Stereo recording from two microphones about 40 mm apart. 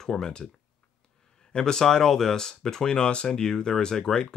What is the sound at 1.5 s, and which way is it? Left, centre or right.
Speech, centre.